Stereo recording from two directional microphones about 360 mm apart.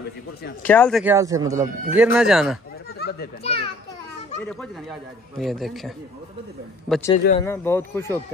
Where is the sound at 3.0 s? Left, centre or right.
Left.